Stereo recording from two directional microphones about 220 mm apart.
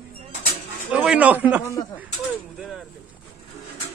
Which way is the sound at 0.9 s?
5° right (ahead or behind).